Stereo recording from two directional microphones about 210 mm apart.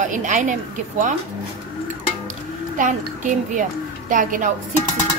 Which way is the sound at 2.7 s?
35° right (ahead or behind).